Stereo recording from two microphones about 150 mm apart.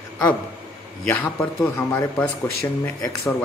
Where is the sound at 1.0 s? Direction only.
10° left (ahead or behind).